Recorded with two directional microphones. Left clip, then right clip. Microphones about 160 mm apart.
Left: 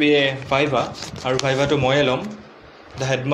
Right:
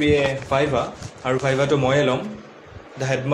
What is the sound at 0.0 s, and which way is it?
A man's voice, 25° left (ahead or behind).